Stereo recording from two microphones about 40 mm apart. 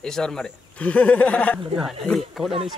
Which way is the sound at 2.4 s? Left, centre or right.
Centre.